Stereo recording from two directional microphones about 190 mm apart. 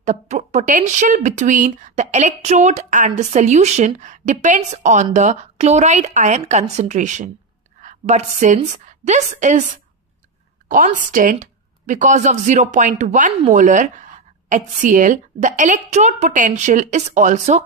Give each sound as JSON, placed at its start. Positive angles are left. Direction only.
{"t": 0.0, "sound": "a woman's voice", "side_deg": -35}
{"t": 10.7, "sound": "a woman's voice", "side_deg": -45}